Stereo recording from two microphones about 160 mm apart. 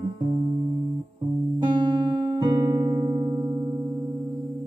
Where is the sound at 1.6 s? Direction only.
30° right (ahead or behind).